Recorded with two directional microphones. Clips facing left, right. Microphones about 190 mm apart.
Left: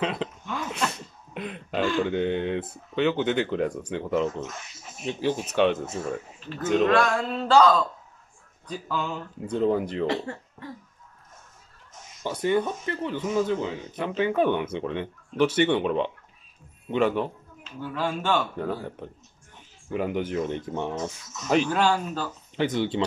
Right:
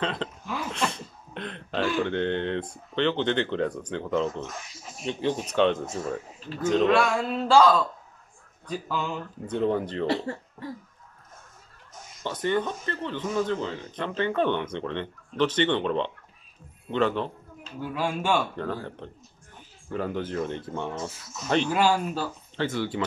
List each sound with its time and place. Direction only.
0.0 s speech: 10° left (ahead or behind)
0.7 s cough: 5° left (ahead or behind)
2.0 s speech: 10° left (ahead or behind)
6.9 s a sound: 5° right (ahead or behind)
8.6 s speech: 10° right (ahead or behind)
9.5 s speech: 10° left (ahead or behind)
12.2 s speech: 10° left (ahead or behind)
17.7 s speech: 10° right (ahead or behind)
18.6 s speech: 10° left (ahead or behind)
20.9 s speech: 10° right (ahead or behind)
22.6 s speech: 20° left (ahead or behind)